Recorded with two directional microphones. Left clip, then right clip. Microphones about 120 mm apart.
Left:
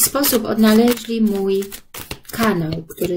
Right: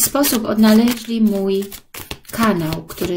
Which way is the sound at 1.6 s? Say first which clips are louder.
Even; 15° right (ahead or behind).